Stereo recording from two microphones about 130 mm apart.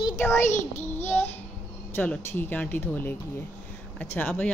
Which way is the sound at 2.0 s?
15° left (ahead or behind).